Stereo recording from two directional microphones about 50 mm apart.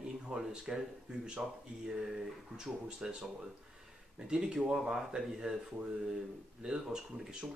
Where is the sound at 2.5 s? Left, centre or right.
Centre.